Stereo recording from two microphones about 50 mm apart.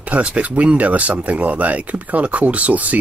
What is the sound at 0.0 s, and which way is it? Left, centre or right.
Speech, right.